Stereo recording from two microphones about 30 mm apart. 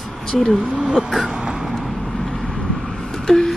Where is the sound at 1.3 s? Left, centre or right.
Right.